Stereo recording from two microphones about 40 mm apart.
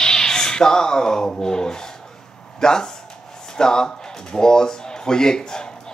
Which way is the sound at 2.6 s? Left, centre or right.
Centre.